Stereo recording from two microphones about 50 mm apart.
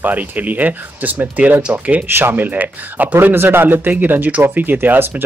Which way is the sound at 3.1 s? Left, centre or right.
Right.